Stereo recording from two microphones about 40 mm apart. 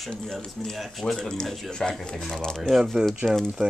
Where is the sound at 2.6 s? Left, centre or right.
Centre.